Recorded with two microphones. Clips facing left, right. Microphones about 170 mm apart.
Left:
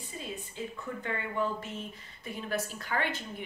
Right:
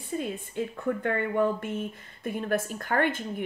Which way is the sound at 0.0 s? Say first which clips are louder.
Right 9 dB; 55° right (ahead or behind).